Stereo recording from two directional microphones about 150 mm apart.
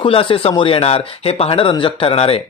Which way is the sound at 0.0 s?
35° left (ahead or behind).